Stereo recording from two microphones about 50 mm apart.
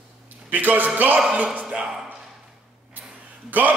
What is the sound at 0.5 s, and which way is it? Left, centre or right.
A man's voice, right.